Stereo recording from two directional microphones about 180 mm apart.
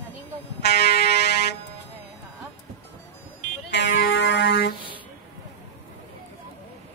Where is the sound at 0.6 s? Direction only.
60° left (ahead or behind).